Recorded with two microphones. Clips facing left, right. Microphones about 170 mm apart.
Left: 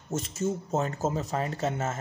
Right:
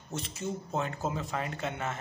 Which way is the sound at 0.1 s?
45° left (ahead or behind).